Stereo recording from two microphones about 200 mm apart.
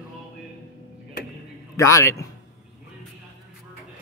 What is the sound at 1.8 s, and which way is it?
Speech, 15° left (ahead or behind).